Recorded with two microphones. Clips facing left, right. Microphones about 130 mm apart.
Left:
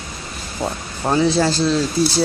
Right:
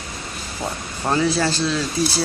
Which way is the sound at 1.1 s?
20° left (ahead or behind).